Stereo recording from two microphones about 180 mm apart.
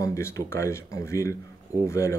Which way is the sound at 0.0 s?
15° left (ahead or behind).